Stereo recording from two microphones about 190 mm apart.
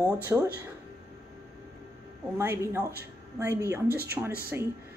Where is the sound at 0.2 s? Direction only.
15° right (ahead or behind).